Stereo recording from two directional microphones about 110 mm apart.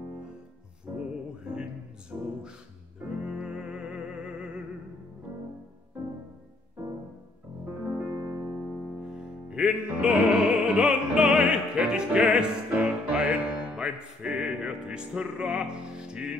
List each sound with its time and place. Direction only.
0.9 s music: 10° right (ahead or behind)
2.1 s music: 25° right (ahead or behind)
3.3 s music: 5° right (ahead or behind)
8.0 s music: 20° right (ahead or behind)
9.0 s music: 10° right (ahead or behind)